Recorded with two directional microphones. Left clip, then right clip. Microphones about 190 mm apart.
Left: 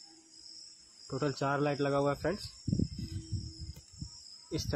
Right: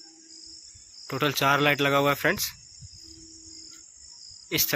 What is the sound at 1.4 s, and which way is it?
Speech, 15° right (ahead or behind).